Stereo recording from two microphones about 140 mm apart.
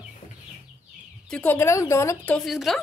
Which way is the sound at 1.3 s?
10° left (ahead or behind).